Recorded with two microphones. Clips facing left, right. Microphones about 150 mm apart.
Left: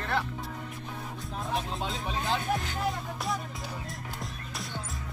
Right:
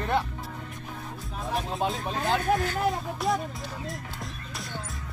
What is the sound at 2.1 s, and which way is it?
Speech, 50° right (ahead or behind).